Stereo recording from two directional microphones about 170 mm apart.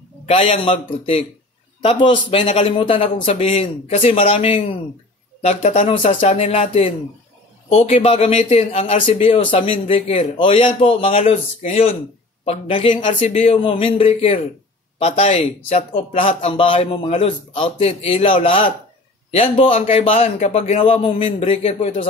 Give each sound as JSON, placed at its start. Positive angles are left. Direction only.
{"t": 0.3, "sound": "speech", "side_deg": 35}